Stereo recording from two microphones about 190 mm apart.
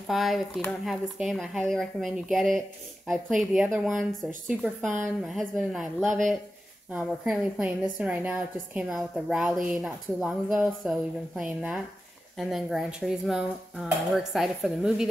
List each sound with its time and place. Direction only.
0.1 s a woman's voice: centre (ahead or behind)
4.8 s speech: 40° right (ahead or behind)
5.2 s a woman's voice: centre (ahead or behind)
6.0 s speech: 40° right (ahead or behind)
6.9 s a woman's voice: 5° right (ahead or behind)